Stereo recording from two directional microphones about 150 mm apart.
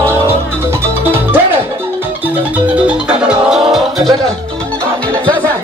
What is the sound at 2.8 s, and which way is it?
Music, 5° right (ahead or behind).